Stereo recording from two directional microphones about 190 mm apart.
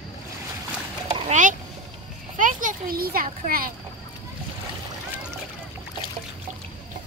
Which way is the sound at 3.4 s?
50° right (ahead or behind).